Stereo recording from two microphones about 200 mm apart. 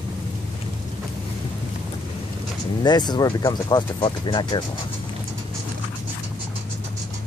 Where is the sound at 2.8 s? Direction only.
20° left (ahead or behind).